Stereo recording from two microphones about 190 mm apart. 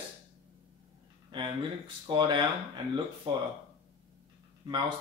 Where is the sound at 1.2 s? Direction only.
25° right (ahead or behind).